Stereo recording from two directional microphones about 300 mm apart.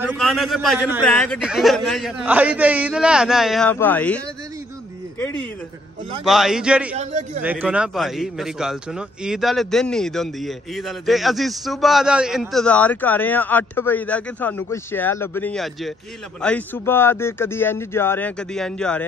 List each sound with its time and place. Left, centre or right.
0.0 s a man's voice: centre
6.2 s a man's voice: centre
7.0 s a man's voice: right
7.4 s a man's voice: centre